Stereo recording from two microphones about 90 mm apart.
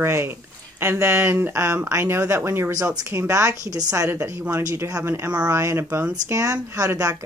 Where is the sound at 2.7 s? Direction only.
40° right (ahead or behind).